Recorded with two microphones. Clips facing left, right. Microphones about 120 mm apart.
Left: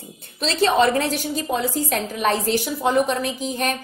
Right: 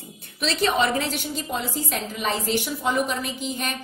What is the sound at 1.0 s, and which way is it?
A woman's voice, 45° left (ahead or behind).